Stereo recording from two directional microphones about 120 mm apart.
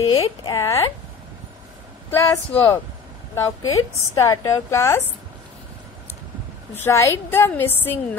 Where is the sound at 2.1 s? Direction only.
25° left (ahead or behind).